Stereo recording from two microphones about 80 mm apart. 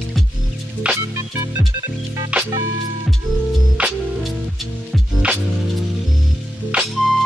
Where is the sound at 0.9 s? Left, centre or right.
Centre.